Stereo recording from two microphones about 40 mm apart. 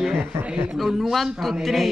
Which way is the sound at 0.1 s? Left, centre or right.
Right.